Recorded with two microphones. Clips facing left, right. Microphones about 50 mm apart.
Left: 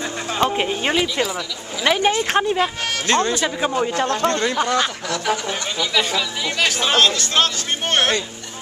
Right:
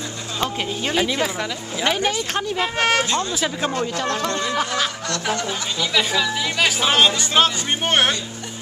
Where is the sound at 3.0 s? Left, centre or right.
Left.